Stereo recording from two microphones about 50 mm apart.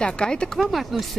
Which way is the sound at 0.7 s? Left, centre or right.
Centre.